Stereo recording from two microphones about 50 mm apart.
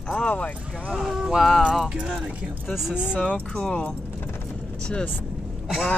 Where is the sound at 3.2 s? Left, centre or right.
Centre.